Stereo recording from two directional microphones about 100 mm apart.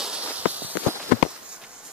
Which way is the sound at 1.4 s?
10° right (ahead or behind).